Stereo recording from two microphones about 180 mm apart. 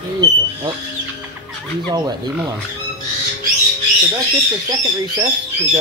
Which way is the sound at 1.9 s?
25° right (ahead or behind).